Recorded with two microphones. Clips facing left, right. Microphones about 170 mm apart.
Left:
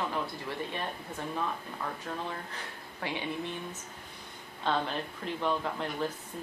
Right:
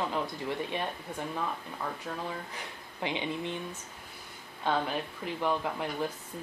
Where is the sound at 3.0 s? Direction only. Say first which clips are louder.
Right 2 dB; 20° right (ahead or behind).